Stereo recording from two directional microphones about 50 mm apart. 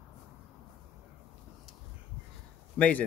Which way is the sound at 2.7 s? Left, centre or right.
Left.